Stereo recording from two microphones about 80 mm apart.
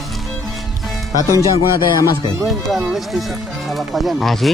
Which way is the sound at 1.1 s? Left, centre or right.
Left.